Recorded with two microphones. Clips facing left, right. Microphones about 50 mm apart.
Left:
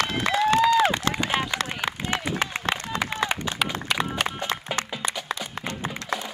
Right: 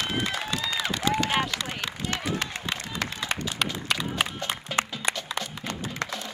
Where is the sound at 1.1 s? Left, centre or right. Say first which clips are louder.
Even; left.